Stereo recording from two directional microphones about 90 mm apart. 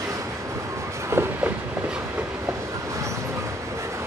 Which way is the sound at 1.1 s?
30° right (ahead or behind).